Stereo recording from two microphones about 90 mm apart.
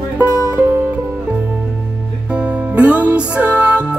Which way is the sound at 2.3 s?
15° right (ahead or behind).